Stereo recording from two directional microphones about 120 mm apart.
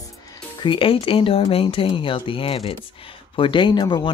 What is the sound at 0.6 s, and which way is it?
Speech, 45° left (ahead or behind).